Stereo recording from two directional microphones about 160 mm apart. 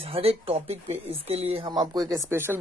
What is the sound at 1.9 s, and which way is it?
Speech, 20° right (ahead or behind).